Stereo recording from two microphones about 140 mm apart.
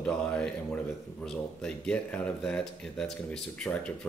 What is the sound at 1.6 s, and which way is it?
Speech, 5° left (ahead or behind).